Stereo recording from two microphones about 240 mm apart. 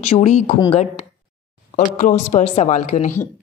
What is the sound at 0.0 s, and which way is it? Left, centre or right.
Speech, left.